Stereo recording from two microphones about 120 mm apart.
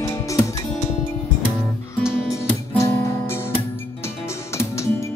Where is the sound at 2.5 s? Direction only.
20° left (ahead or behind).